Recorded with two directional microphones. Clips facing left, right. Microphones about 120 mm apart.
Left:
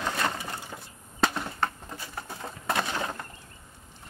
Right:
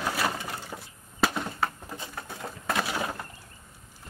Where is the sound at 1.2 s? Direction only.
5° right (ahead or behind).